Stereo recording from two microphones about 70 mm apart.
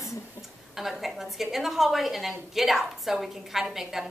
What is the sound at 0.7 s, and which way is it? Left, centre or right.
A woman's voice, centre.